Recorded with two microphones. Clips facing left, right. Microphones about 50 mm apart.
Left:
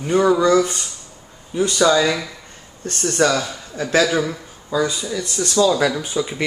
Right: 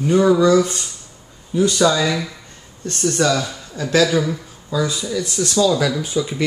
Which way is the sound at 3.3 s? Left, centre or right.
Centre.